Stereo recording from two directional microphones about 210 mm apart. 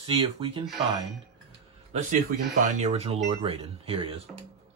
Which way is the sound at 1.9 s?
40° right (ahead or behind).